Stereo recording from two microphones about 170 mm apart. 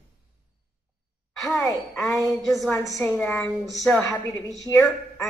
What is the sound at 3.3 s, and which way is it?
Speech, 10° left (ahead or behind).